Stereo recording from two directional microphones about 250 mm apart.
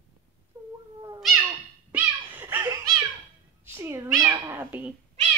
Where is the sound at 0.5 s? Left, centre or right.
Centre.